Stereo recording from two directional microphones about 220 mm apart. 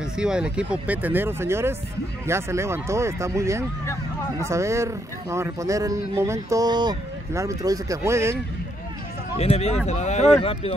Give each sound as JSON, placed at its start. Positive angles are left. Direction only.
{"t": 0.2, "sound": "speech", "side_deg": -5}
{"t": 9.4, "sound": "speech", "side_deg": 30}